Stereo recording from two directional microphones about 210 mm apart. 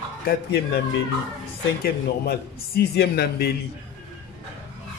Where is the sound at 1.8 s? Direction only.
50° left (ahead or behind).